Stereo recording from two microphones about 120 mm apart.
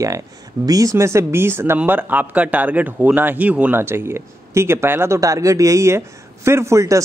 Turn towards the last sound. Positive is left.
turn(degrees=-25)  # may be behind; listen again after turning